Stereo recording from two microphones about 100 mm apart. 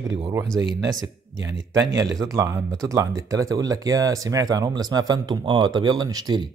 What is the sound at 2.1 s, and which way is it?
Speech, 35° right (ahead or behind).